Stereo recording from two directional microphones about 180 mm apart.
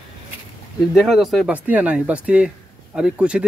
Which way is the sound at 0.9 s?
Centre (ahead or behind).